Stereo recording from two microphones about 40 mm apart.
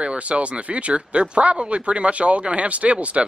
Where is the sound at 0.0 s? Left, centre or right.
Right.